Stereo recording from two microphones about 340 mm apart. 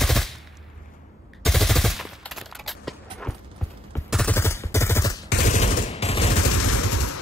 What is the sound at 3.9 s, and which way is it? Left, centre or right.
Gunshot, centre.